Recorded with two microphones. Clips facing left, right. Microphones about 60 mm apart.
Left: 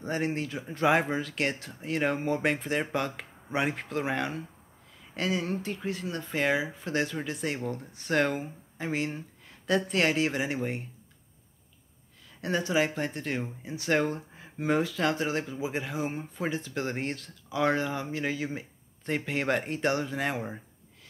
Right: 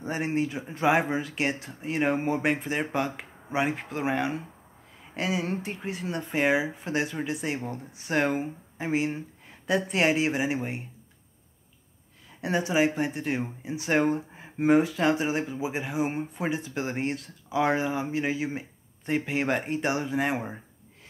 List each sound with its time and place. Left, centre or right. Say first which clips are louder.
0.0 s speech: right 2 dB; centre
0.8 s speech: right 1 dB; centre
5.4 s speech: right 1 dB; right; by 10.8 s centre
12.4 s speech: right 2 dB; centre